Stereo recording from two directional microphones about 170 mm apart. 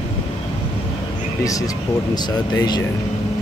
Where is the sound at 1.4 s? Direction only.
20° left (ahead or behind).